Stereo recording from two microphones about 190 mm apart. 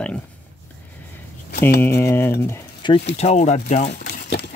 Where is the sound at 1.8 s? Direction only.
15° left (ahead or behind).